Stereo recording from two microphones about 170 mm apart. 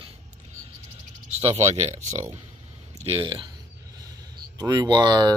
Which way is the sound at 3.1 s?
30° right (ahead or behind).